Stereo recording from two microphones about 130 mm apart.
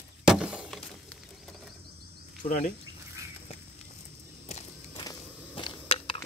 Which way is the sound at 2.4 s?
60° left (ahead or behind).